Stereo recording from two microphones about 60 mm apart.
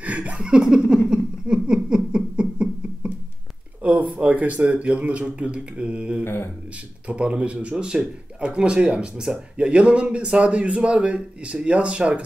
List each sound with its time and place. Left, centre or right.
0.0 s laughter: right
1.0 s a sound: centre
4.2 s speech: right
4.7 s mantra: centre
6.2 s speech: left
7.1 s mantra: centre
7.7 s speech: centre